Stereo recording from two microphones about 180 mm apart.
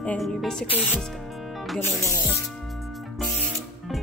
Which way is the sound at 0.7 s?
10° right (ahead or behind).